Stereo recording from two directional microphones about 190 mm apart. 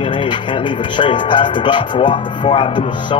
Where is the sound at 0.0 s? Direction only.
25° left (ahead or behind).